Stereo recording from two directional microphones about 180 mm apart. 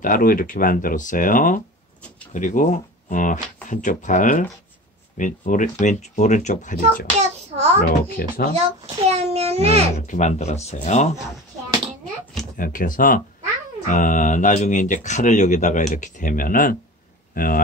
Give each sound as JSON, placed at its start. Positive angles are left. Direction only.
{"t": 0.0, "sound": "speech", "side_deg": 50}
{"t": 7.2, "sound": "child singing", "side_deg": -35}
{"t": 8.2, "sound": "speech", "side_deg": 55}
{"t": 8.5, "sound": "a child's voice", "side_deg": -35}
{"t": 9.9, "sound": "speech", "side_deg": 40}
{"t": 12.5, "sound": "speech", "side_deg": 50}
{"t": 17.3, "sound": "a sound", "side_deg": 55}